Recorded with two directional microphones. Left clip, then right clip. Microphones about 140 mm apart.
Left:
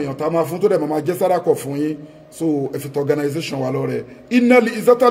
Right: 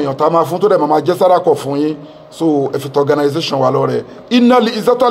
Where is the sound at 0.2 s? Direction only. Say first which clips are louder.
Right 6 dB; 15° left (ahead or behind).